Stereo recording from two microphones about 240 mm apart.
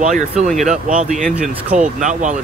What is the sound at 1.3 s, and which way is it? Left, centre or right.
Speech, centre.